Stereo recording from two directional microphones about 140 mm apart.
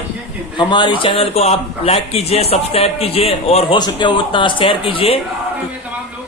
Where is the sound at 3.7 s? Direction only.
30° left (ahead or behind).